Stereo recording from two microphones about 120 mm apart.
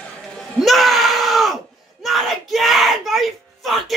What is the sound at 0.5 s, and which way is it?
Screaming, centre (ahead or behind).